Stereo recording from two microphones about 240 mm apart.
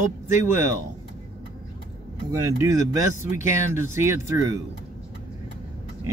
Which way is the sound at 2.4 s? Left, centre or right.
Centre.